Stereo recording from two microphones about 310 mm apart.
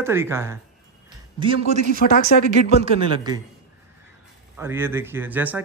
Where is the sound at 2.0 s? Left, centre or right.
Left.